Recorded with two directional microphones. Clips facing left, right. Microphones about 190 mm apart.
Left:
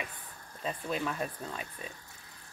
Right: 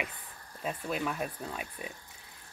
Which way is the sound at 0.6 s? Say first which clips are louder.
Even; 5° right (ahead or behind).